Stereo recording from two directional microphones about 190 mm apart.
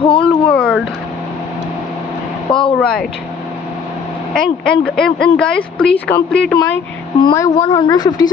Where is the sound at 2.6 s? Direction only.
5° left (ahead or behind).